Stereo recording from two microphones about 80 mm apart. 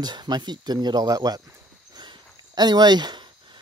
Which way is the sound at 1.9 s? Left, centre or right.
Right.